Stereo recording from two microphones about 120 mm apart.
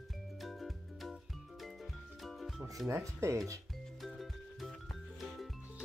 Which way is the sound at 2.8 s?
20° right (ahead or behind).